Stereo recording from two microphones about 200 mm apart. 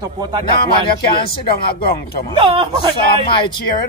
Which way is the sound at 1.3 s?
50° left (ahead or behind).